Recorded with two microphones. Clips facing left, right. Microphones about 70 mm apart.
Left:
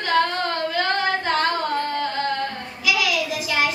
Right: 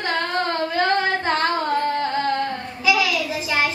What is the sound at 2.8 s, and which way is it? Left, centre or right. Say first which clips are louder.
Child singing: right 2 dB; right.